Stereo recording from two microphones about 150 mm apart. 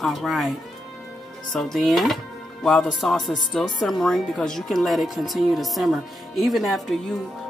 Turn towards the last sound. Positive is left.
turn(degrees=0)  # may be behind; listen again after turning